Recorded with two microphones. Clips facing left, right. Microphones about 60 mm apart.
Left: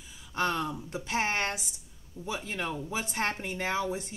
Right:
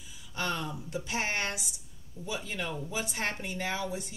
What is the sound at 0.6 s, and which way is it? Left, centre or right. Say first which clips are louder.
Speech: left 4 dB; left.